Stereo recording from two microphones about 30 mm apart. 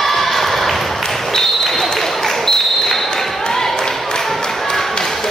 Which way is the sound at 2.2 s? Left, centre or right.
Centre.